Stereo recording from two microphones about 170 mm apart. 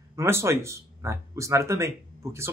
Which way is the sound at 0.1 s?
15° right (ahead or behind).